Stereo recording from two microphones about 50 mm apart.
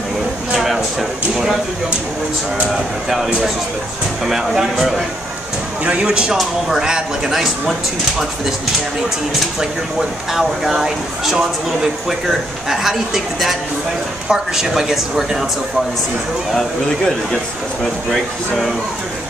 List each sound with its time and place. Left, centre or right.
0.6 s a sound: centre
1.3 s a woman's voice: centre
4.3 s speech: centre
6.0 s speech: centre
9.6 s a woman's voice: centre
16.5 s speech: centre